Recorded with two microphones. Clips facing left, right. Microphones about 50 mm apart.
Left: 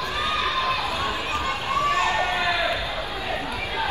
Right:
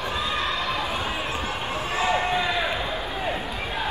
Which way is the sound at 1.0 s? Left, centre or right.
Left.